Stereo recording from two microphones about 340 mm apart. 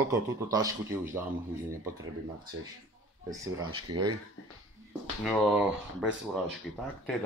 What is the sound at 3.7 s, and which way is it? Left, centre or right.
Speech, right.